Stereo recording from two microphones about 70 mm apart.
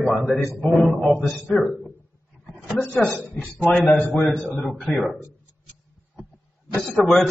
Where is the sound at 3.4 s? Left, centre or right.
Centre.